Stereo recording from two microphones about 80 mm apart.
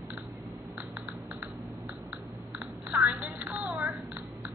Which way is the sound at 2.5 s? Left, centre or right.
Right.